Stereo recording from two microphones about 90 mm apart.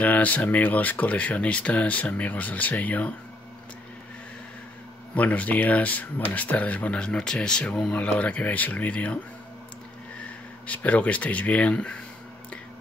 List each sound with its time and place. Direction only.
0.0 s speech: 15° left (ahead or behind)
5.1 s speech: 15° left (ahead or behind)
10.7 s speech: 15° left (ahead or behind)